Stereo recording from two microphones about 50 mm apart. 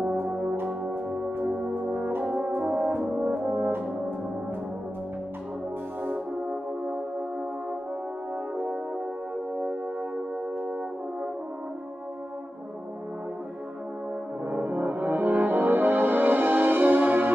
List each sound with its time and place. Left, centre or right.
0.0 s brass instrument: right
6.0 s music: right
14.4 s music: right